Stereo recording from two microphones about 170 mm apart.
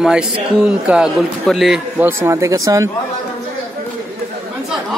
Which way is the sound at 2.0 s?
15° right (ahead or behind).